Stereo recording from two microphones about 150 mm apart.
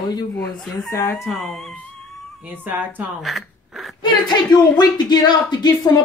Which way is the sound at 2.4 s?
10° right (ahead or behind).